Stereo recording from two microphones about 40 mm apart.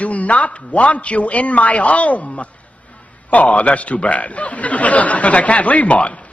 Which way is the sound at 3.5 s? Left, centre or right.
Left.